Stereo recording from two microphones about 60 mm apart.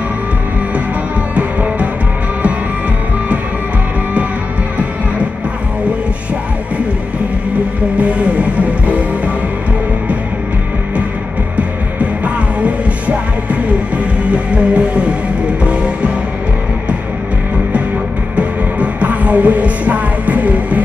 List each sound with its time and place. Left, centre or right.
1.3 s music: right
8.0 s music: right
12.5 s music: right
18.3 s music: right